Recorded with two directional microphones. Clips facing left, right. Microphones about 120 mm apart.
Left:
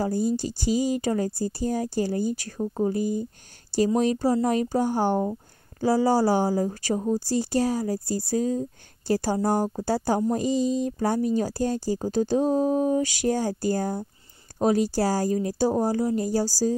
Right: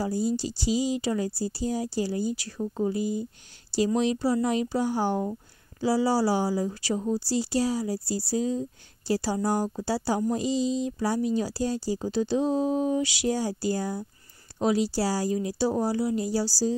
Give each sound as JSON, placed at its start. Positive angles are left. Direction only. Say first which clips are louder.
{"t": 0.0, "sound": "speech", "louder": "left 2 dB", "side_deg": 50}